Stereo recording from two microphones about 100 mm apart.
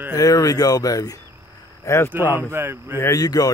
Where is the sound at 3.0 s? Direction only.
35° left (ahead or behind).